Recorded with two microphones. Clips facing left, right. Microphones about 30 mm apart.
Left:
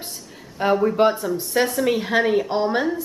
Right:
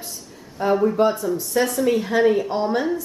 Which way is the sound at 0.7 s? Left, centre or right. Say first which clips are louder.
Even; centre.